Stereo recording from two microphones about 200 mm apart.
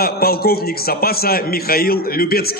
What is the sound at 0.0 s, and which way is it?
A man's voice, 50° left (ahead or behind).